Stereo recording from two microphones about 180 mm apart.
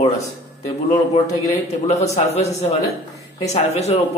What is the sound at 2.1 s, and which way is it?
Speech, 35° left (ahead or behind).